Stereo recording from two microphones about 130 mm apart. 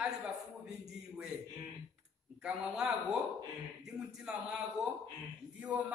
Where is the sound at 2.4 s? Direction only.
5° right (ahead or behind).